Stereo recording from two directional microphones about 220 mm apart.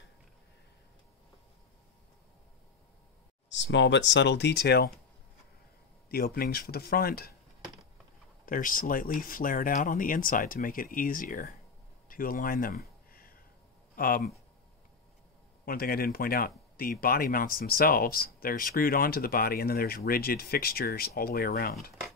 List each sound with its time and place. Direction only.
3.4 s speech: 55° left (ahead or behind)
6.0 s speech: 45° left (ahead or behind)
8.5 s speech: 40° left (ahead or behind)
12.1 s a sound: 40° left (ahead or behind)
13.9 s speech: 40° left (ahead or behind)
15.6 s speech: 45° left (ahead or behind)